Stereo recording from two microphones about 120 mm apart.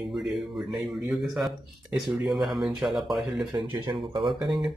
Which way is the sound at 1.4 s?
Centre (ahead or behind).